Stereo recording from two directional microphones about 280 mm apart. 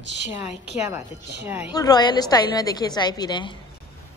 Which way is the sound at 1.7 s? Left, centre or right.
Centre.